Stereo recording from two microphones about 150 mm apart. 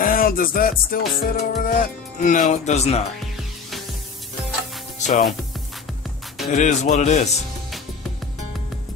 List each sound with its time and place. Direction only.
0.0 s music: 70° left (ahead or behind); by 3.0 s 45° left (ahead or behind)
4.9 s music: 55° left (ahead or behind)
6.5 s speech: 50° left (ahead or behind)